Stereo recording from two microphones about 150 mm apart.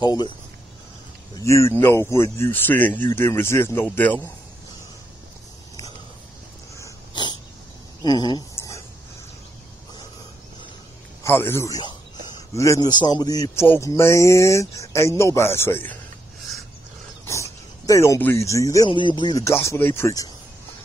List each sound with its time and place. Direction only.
0.0 s speech: 30° left (ahead or behind)
1.3 s speech: 20° left (ahead or behind)
6.8 s dog: 30° left (ahead or behind)
8.0 s a sound: 25° left (ahead or behind)
11.2 s speech: 15° left (ahead or behind)
17.3 s speech: 20° left (ahead or behind)
18.9 s speech: 30° left (ahead or behind)
19.4 s speech: 20° left (ahead or behind)